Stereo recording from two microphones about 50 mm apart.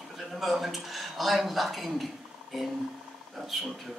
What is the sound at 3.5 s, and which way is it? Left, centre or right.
Speech, centre.